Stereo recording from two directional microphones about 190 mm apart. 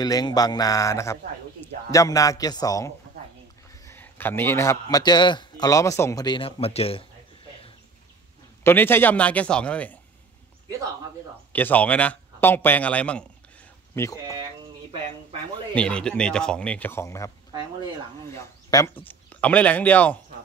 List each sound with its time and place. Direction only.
0.0 s a man's voice: 20° left (ahead or behind)
8.6 s a man's voice: 10° left (ahead or behind)
11.5 s a man's voice: 10° left (ahead or behind)
15.7 s speech: 5° left (ahead or behind)
18.4 s speech: 15° left (ahead or behind)